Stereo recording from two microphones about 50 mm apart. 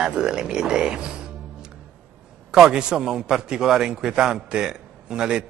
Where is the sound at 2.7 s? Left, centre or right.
Centre.